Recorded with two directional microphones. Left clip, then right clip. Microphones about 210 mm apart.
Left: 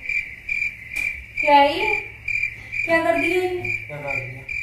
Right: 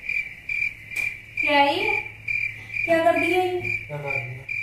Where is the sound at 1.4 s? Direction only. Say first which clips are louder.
Left 4 dB; 15° left (ahead or behind).